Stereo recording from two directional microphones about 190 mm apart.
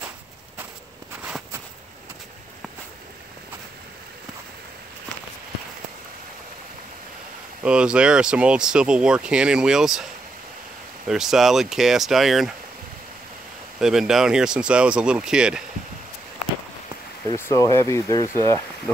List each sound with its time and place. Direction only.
7.6 s speech: 5° right (ahead or behind)
11.1 s speech: centre (ahead or behind)
13.7 s speech: 5° right (ahead or behind)
17.3 s speech: 15° left (ahead or behind)